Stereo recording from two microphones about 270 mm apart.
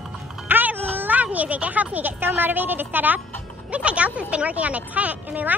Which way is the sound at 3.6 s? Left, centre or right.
Centre.